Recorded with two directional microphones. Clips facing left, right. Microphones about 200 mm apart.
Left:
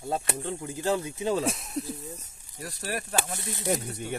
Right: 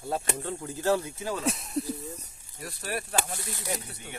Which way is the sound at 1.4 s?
Centre (ahead or behind).